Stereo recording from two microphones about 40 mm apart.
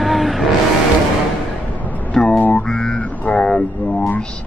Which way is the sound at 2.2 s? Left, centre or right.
Centre.